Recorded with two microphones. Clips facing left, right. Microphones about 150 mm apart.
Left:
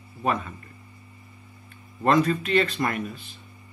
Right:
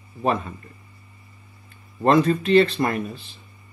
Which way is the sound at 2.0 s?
30° right (ahead or behind).